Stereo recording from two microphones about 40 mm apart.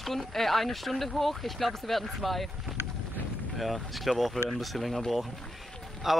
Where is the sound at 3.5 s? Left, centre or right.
Centre.